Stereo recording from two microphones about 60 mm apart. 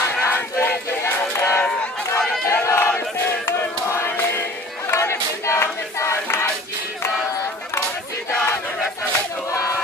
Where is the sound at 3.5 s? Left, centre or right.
Left.